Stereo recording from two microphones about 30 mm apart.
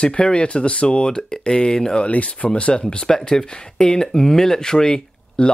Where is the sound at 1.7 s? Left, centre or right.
Left.